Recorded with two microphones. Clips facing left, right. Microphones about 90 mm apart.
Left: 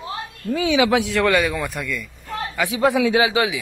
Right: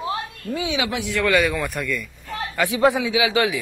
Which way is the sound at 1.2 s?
25° left (ahead or behind).